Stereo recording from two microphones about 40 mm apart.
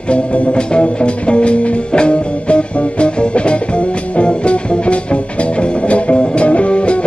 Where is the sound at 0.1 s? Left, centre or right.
Left.